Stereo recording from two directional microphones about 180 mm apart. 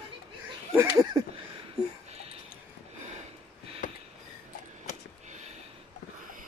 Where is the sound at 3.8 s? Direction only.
45° left (ahead or behind).